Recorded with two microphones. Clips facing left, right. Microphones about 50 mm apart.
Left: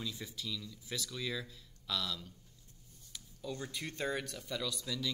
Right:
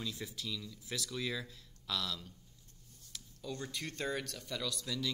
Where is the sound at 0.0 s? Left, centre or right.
Centre.